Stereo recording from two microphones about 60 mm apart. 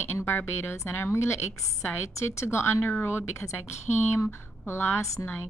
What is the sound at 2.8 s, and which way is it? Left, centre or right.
Speech, left.